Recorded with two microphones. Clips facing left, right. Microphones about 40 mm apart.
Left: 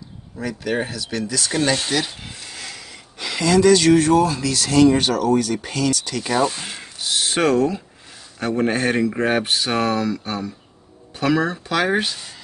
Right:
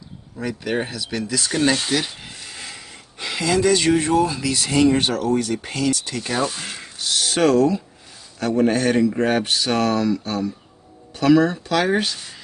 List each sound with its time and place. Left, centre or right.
0.4 s speech: centre
2.9 s gasp: centre
4.2 s speech: centre
6.8 s a sound: centre
7.2 s a sound: left
8.4 s speech: centre